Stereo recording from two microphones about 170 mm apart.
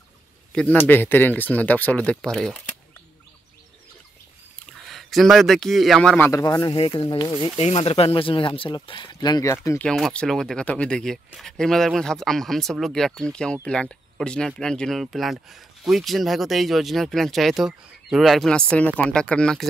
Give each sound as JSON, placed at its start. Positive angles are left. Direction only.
{"t": 0.5, "sound": "a man's voice", "side_deg": 5}
{"t": 4.6, "sound": "a man's voice", "side_deg": 0}
{"t": 7.5, "sound": "speech", "side_deg": 35}
{"t": 9.7, "sound": "speech", "side_deg": 5}